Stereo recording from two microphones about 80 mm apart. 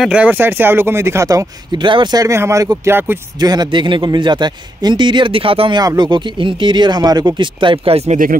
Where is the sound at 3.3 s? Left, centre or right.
Right.